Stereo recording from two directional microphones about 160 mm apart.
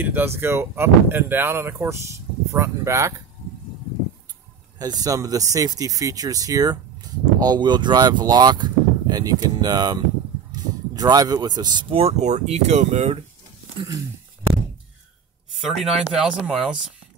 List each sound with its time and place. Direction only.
0.0 s speech: 15° right (ahead or behind)
4.7 s speech: 25° right (ahead or behind); by 13.2 s 45° right (ahead or behind)
15.5 s speech: centre (ahead or behind)